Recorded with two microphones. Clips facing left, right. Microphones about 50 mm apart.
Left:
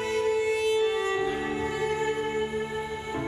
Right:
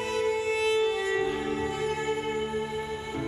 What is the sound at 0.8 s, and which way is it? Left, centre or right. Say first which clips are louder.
Music: left 1 dB; left.